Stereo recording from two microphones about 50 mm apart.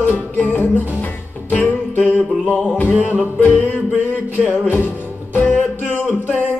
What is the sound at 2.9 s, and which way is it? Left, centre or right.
Music, right.